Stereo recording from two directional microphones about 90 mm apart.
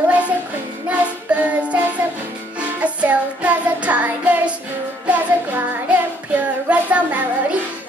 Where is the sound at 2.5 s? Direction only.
15° right (ahead or behind).